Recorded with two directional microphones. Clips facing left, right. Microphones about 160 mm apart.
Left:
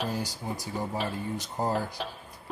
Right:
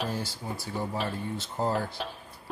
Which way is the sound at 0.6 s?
15° left (ahead or behind).